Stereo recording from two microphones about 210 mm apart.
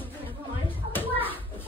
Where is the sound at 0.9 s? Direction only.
10° left (ahead or behind).